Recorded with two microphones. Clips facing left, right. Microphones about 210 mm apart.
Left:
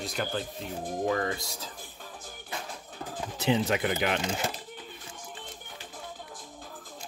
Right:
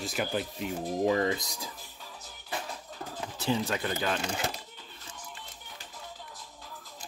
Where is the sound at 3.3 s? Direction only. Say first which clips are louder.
Left 4 dB; 20° left (ahead or behind).